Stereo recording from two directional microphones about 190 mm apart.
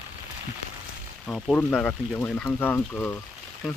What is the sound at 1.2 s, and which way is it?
Speech, centre (ahead or behind).